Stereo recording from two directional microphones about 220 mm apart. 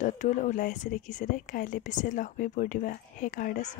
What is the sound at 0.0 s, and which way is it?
Speech, 35° left (ahead or behind).